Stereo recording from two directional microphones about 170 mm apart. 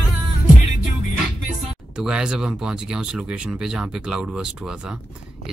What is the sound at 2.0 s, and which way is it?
Speech, 5° right (ahead or behind).